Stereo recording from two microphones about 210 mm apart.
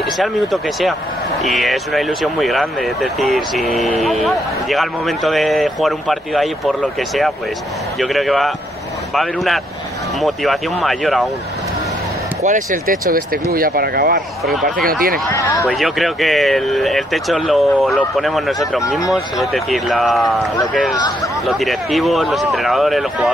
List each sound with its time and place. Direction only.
0.0 s speech: centre (ahead or behind)
12.4 s speech: 40° right (ahead or behind)
14.4 s speech: centre (ahead or behind)
14.9 s speech: 45° right (ahead or behind)
15.2 s speech: 15° left (ahead or behind)
15.7 s speech: centre (ahead or behind)
21.5 s speech: centre (ahead or behind)